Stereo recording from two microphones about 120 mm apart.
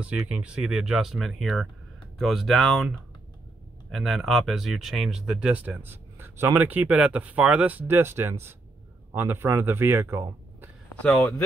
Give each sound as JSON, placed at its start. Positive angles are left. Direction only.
{"t": 0.0, "sound": "speech", "side_deg": -10}
{"t": 3.9, "sound": "speech", "side_deg": 0}
{"t": 11.0, "sound": "speech", "side_deg": 5}